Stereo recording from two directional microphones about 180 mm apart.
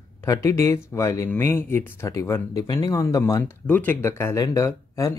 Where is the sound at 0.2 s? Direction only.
15° left (ahead or behind).